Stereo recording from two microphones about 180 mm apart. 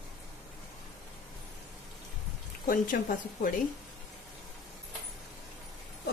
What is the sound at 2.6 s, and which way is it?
Speech, 45° left (ahead or behind).